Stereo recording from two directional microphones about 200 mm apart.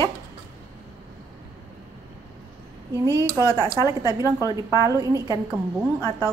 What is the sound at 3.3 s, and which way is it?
Speech, 15° left (ahead or behind).